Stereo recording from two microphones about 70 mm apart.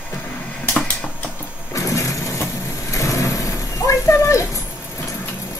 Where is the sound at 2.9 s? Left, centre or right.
Left.